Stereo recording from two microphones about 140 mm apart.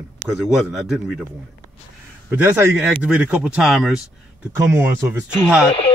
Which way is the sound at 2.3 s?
15° right (ahead or behind).